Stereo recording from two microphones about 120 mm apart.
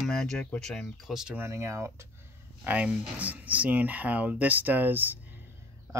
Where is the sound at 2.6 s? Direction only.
10° right (ahead or behind).